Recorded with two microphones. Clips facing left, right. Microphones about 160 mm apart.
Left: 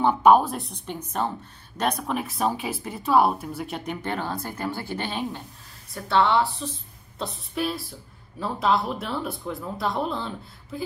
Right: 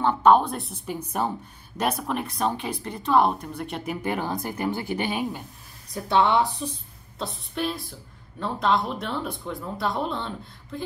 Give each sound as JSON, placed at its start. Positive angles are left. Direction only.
{"t": 0.0, "sound": "a woman's voice", "side_deg": 10}
{"t": 7.2, "sound": "speech", "side_deg": 0}